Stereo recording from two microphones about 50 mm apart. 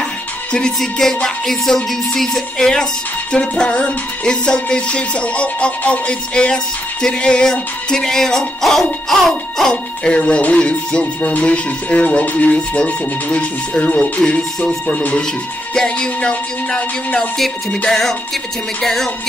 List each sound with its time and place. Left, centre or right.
0.5 s music: centre
2.7 s speech: centre
10.1 s speech: left
16.0 s speech: left
17.8 s speech: centre
18.8 s music: centre